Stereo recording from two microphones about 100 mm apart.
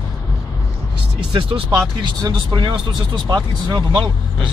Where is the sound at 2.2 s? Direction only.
45° right (ahead or behind).